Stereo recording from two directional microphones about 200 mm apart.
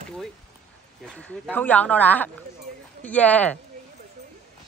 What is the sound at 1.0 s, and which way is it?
Speech, 5° left (ahead or behind).